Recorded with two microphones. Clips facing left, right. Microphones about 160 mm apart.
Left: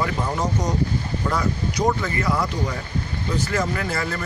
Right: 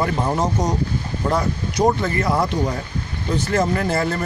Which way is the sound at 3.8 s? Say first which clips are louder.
Right 5 dB; 30° right (ahead or behind).